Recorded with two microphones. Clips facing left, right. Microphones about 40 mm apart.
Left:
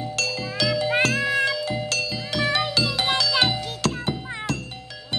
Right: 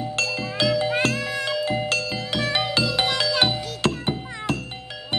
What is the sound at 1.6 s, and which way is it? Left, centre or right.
Music, right.